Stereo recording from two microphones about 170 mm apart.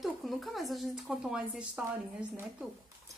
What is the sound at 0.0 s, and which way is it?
A woman's voice, centre (ahead or behind).